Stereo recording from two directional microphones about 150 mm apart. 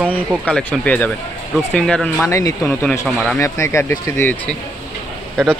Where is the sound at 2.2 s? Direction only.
20° left (ahead or behind).